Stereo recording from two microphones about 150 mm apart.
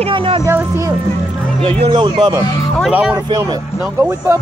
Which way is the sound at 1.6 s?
35° right (ahead or behind).